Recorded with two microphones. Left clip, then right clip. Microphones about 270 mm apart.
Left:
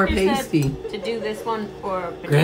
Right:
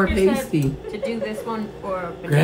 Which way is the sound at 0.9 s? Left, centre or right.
Left.